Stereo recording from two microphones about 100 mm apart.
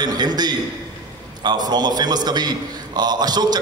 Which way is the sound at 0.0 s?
45° right (ahead or behind).